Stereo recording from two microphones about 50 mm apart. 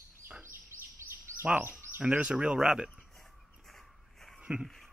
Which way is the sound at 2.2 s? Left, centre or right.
Right.